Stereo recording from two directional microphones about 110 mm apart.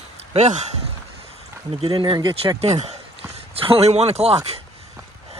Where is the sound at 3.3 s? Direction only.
60° right (ahead or behind).